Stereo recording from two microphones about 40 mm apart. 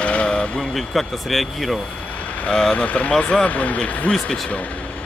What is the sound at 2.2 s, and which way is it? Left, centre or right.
Vehicle, left.